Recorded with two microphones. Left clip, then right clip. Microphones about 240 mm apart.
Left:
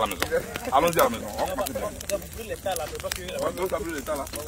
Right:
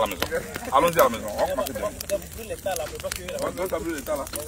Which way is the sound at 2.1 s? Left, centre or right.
Left.